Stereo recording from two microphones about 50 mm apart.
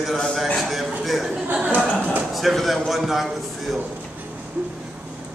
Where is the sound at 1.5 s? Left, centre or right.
Right.